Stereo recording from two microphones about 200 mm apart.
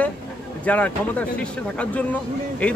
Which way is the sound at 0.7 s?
5° left (ahead or behind).